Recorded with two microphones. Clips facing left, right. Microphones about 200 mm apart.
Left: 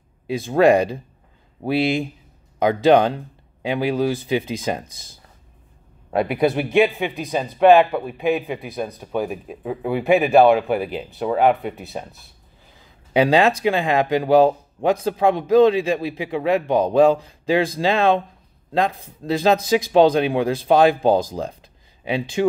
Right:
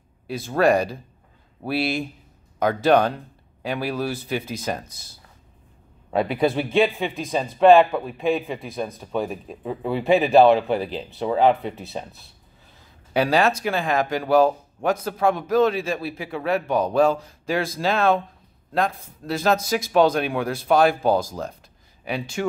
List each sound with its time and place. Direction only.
0.3 s speech: 15° left (ahead or behind)
2.6 s speech: 20° left (ahead or behind)
6.1 s speech: 15° left (ahead or behind)
13.1 s speech: 20° left (ahead or behind)
19.2 s speech: 20° left (ahead or behind)